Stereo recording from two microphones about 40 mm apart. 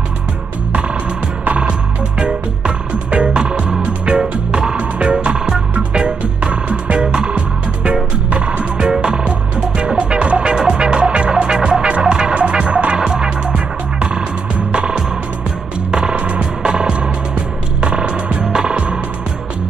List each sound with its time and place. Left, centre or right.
1.4 s music: right